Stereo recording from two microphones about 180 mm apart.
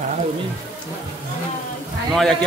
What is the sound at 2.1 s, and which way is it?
Speech, centre (ahead or behind).